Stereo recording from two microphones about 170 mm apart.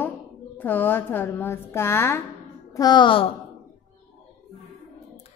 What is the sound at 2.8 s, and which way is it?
Speech, 25° left (ahead or behind).